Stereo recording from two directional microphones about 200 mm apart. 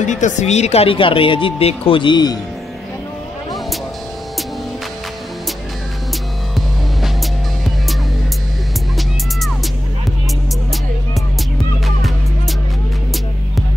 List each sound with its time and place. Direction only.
0.0 s speech: 35° left (ahead or behind)